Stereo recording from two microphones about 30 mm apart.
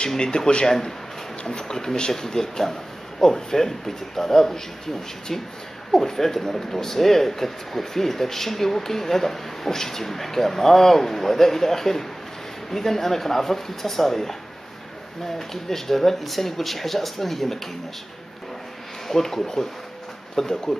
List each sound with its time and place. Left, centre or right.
0.3 s speech: left
0.7 s speech: centre
5.9 s speech: centre
19.0 s speech: centre